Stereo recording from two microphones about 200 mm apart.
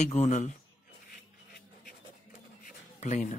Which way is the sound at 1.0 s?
45° left (ahead or behind).